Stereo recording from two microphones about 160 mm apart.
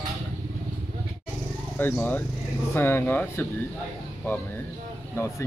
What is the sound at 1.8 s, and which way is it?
Speech, 10° left (ahead or behind).